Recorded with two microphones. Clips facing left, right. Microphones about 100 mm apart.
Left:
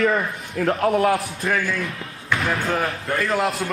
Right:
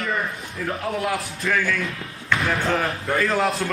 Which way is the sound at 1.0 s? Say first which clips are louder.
Left 5 dB; 30° left (ahead or behind).